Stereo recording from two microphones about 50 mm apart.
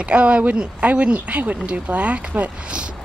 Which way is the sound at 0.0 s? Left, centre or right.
Right.